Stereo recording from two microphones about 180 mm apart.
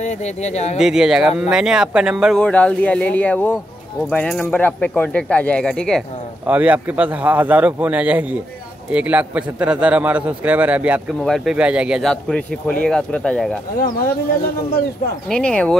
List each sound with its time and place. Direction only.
0.0 s speech: 40° left (ahead or behind)
0.7 s speech: 5° right (ahead or behind)
6.4 s a man's voice: 10° right (ahead or behind)
13.9 s speech: 55° left (ahead or behind)
15.2 s speech: 5° left (ahead or behind)